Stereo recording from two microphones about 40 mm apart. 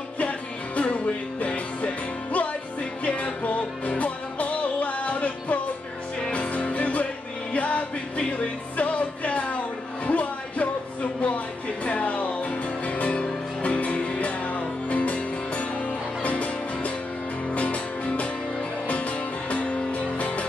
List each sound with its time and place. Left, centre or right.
0.2 s music: left